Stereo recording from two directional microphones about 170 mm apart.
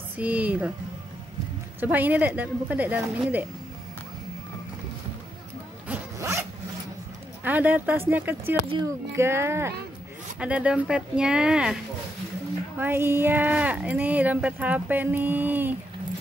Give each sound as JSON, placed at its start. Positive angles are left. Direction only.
{"t": 0.2, "sound": "speech", "side_deg": -10}
{"t": 1.8, "sound": "speech", "side_deg": -10}
{"t": 6.1, "sound": "zipper", "side_deg": -15}
{"t": 7.4, "sound": "speech", "side_deg": -10}